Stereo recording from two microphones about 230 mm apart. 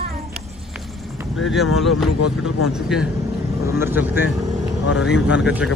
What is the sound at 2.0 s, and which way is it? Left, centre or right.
Speech, left.